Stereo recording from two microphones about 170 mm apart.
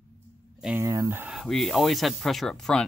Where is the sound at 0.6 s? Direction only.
10° right (ahead or behind).